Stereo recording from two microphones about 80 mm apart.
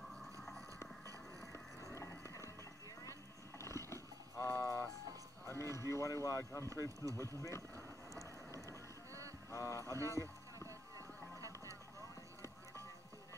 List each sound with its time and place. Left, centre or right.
0.1 s a sound: centre
0.7 s a sound: left
2.0 s music: left
3.1 s horse: left
5.5 s speech: left
7.7 s vehicle: right
9.5 s speech: left
9.9 s speech: right